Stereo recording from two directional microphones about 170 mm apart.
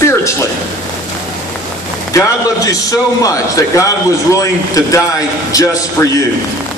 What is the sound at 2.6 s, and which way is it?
A man's voice, 20° left (ahead or behind).